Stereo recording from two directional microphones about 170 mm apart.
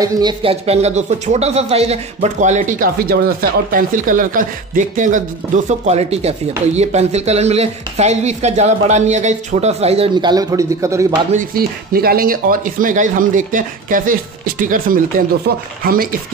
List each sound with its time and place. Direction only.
0.0 s speech: 25° right (ahead or behind)
11.3 s speech: 60° right (ahead or behind)
15.5 s speech: 65° right (ahead or behind)